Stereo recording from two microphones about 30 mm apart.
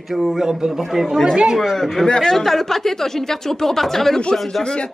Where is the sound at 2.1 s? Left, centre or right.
Centre.